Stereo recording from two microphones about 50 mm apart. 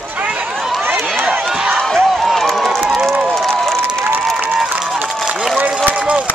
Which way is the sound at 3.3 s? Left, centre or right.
Centre.